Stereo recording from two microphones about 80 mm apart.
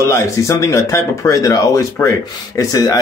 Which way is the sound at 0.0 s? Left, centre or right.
Left.